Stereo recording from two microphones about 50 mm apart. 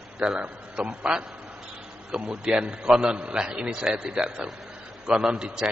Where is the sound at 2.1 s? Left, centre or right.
Right.